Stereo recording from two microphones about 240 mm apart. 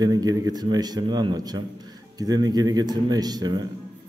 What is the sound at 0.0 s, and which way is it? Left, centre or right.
A man's voice, centre.